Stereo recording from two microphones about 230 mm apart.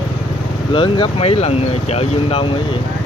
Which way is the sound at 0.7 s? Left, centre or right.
Left.